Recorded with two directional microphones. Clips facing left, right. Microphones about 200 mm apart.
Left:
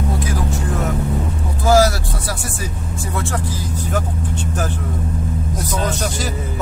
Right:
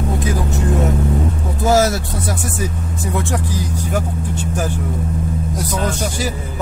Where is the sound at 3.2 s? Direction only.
15° right (ahead or behind).